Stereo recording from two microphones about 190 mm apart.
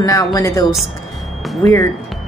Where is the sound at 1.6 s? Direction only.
15° left (ahead or behind).